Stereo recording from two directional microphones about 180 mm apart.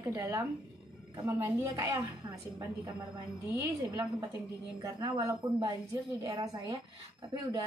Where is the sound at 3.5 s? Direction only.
15° right (ahead or behind).